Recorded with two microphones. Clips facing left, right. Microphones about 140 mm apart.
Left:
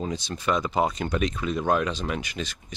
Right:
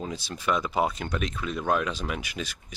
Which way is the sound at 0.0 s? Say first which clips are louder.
Left 3 dB; 5° right (ahead or behind).